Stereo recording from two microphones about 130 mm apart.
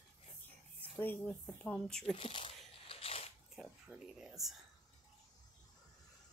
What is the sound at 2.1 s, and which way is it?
Speech, 45° left (ahead or behind).